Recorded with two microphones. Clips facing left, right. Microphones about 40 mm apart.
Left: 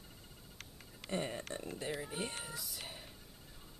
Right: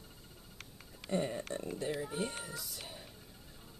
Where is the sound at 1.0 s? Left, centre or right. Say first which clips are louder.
Right 4 dB; centre.